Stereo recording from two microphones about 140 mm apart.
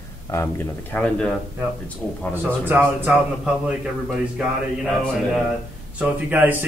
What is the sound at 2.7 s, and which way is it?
Speech, 15° right (ahead or behind).